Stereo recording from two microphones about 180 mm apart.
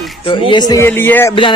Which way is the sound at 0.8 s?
10° left (ahead or behind).